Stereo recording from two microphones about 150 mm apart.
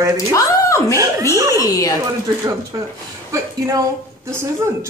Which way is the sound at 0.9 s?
25° right (ahead or behind).